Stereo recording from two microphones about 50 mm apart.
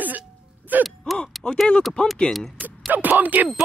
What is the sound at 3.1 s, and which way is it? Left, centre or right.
Speech, right.